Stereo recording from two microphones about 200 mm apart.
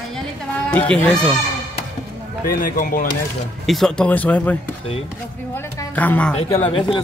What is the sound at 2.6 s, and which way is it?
Speech, 45° left (ahead or behind).